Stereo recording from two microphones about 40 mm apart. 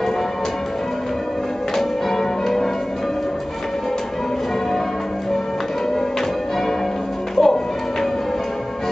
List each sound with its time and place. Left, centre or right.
1.8 s change ringing: centre
7.3 s music: centre